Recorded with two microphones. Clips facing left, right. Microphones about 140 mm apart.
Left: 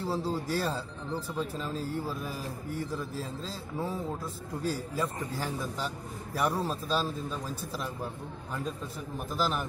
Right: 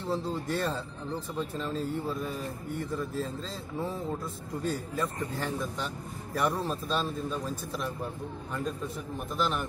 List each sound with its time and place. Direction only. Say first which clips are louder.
0.0 s speech: even; 5° left (ahead or behind)
9.3 s speech: even; centre (ahead or behind)